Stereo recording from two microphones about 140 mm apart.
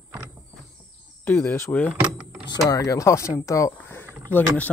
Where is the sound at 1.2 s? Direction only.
15° left (ahead or behind).